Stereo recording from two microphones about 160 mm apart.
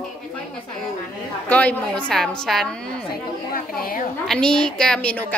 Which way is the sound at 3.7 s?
60° left (ahead or behind).